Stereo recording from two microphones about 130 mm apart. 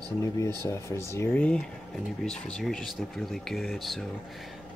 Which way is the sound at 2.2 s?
5° left (ahead or behind).